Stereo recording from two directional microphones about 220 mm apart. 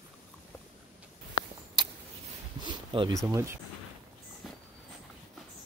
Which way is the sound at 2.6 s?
20° right (ahead or behind).